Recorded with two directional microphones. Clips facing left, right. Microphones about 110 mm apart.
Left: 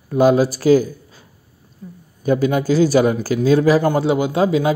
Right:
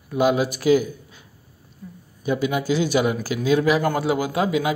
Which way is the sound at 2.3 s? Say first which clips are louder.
Left 5 dB; 40° left (ahead or behind).